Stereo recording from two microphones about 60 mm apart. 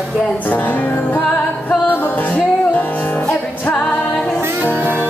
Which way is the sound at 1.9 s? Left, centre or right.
Left.